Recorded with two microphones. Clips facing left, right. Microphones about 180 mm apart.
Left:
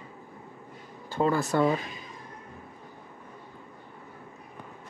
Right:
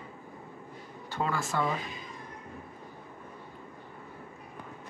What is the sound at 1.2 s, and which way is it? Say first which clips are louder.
Speech: left 7 dB; 35° left (ahead or behind).